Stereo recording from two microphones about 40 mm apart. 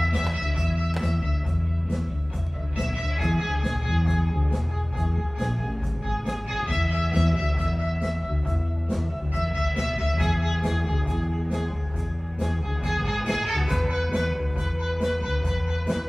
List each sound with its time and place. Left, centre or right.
0.0 s music: centre
2.8 s music: centre
6.2 s music: centre